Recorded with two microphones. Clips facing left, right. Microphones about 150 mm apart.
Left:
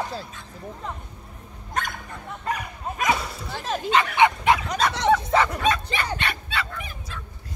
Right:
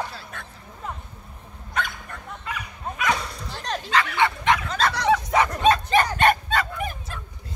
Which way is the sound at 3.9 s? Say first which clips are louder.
Left 3 dB; 20° left (ahead or behind).